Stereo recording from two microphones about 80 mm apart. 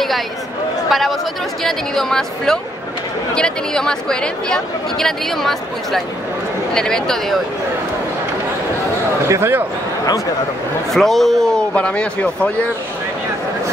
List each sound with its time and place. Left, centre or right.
0.8 s speech: centre
9.3 s a man's voice: right
10.9 s speech: centre